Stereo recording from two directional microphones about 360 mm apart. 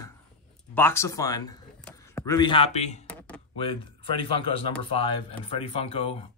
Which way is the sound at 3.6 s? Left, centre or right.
Centre.